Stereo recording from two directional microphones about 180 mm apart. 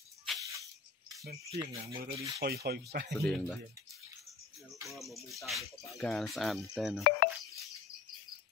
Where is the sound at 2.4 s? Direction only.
60° right (ahead or behind).